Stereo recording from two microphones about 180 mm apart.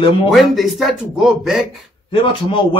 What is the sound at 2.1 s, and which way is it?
Speech, 30° left (ahead or behind).